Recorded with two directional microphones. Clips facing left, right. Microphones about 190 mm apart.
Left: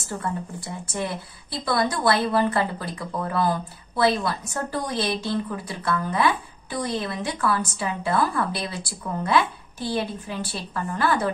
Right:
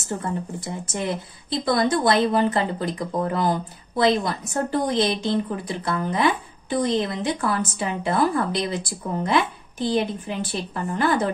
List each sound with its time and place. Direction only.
0.9 s speech: 20° right (ahead or behind)